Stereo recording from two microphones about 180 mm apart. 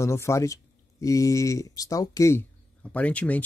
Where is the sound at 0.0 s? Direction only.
15° left (ahead or behind).